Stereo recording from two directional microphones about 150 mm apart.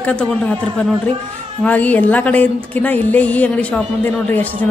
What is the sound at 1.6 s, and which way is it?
A man's voice, 10° left (ahead or behind).